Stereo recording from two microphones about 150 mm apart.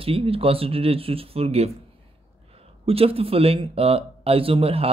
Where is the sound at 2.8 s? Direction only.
40° right (ahead or behind).